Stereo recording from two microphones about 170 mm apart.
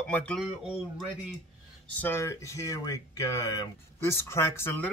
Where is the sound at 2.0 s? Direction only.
15° left (ahead or behind).